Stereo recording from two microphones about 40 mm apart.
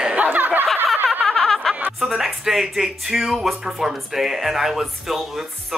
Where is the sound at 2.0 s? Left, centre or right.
Centre.